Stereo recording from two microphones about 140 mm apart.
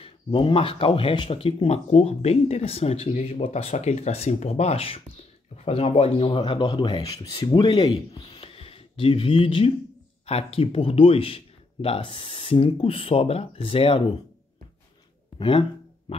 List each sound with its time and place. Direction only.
0.0 s speech: 35° left (ahead or behind)
8.4 s a sound: 40° left (ahead or behind)
10.2 s speech: 45° left (ahead or behind)
15.3 s speech: 40° left (ahead or behind)
16.1 s music: 45° left (ahead or behind)